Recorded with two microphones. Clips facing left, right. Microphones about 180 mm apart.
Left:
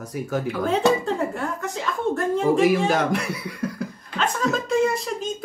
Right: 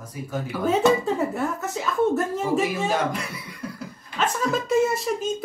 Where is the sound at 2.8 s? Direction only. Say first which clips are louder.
Left 3 dB; 75° left (ahead or behind).